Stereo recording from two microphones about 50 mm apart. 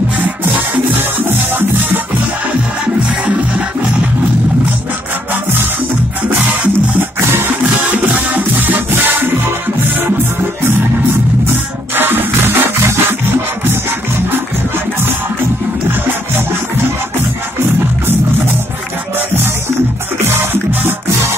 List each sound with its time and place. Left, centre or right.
0.9 s music: right
7.2 s music: right
11.9 s music: right
19.1 s music: right